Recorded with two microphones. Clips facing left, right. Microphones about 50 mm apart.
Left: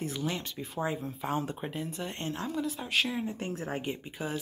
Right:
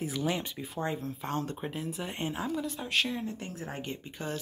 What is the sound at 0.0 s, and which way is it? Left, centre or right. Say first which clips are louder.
Speech: right 2 dB; centre.